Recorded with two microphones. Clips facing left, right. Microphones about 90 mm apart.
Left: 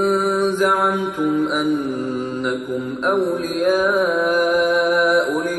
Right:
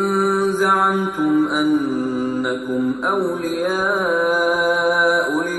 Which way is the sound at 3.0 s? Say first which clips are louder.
Left 1 dB; 5° left (ahead or behind).